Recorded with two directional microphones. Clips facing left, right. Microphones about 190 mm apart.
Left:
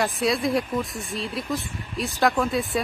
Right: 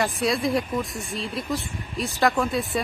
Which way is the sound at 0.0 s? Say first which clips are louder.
Even; centre (ahead or behind).